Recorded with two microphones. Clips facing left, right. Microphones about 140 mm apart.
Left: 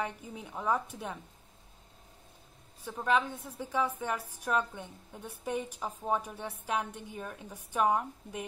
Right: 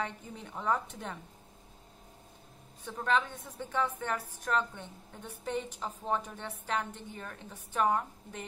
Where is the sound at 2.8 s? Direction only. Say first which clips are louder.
Left 1 dB; 10° left (ahead or behind).